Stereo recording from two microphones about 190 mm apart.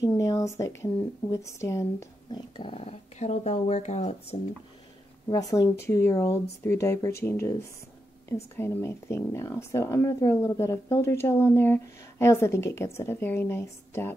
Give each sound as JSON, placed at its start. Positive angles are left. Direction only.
{"t": 0.2, "sound": "speech", "side_deg": 15}
{"t": 5.3, "sound": "speech", "side_deg": 20}
{"t": 8.5, "sound": "speech", "side_deg": 15}